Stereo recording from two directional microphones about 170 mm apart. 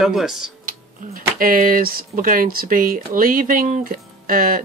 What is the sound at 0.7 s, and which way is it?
Speech, 55° right (ahead or behind).